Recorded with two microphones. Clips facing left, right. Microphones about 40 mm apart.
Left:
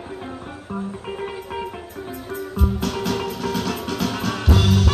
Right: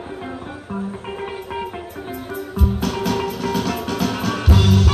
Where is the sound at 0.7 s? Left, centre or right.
Centre.